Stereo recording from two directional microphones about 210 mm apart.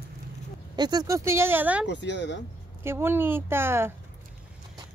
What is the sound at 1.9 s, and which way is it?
Speech, 55° left (ahead or behind).